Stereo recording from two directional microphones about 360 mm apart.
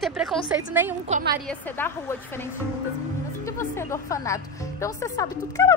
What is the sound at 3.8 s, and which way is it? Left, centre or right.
Speech, centre.